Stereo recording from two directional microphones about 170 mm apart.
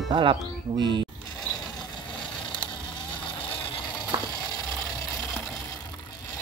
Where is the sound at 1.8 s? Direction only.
25° left (ahead or behind).